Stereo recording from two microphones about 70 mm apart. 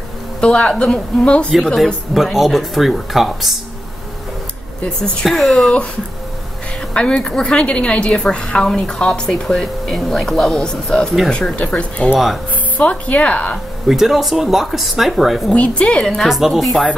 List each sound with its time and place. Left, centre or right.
0.4 s speech: centre
2.1 s speech: centre
4.8 s speech: centre
5.2 s speech: centre
6.9 s a woman's voice: centre
13.8 s speech: centre
15.5 s speech: centre
16.3 s speech: centre